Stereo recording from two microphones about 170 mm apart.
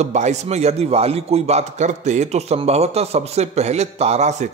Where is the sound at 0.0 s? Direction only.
40° right (ahead or behind).